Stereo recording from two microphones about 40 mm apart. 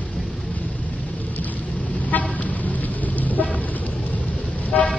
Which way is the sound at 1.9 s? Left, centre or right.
Left.